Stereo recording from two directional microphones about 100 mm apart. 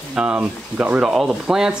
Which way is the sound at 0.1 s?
10° right (ahead or behind).